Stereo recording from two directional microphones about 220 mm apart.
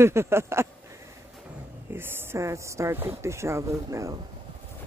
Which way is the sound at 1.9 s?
10° right (ahead or behind).